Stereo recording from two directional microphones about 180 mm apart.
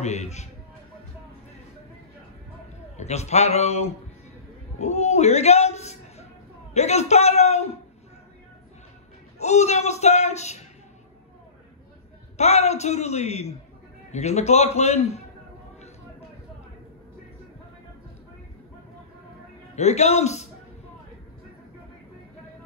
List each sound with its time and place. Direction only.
0.0 s speech: 40° left (ahead or behind)
3.0 s a man's voice: 40° left (ahead or behind)
9.4 s speech: 40° left (ahead or behind)
12.4 s speech: 40° left (ahead or behind)
19.7 s speech: 40° left (ahead or behind)